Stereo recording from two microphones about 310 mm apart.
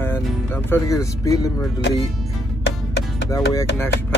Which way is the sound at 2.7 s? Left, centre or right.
Left.